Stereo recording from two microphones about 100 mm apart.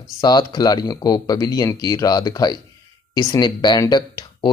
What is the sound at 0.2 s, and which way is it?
Speech, 45° left (ahead or behind).